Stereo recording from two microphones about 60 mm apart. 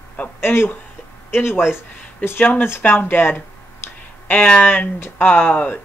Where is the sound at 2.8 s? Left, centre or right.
Left.